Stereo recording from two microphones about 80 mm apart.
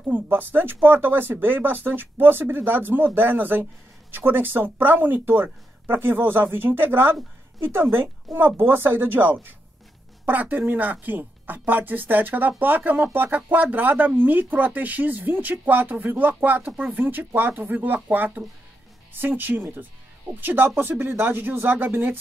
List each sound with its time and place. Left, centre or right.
0.1 s a woman's voice: right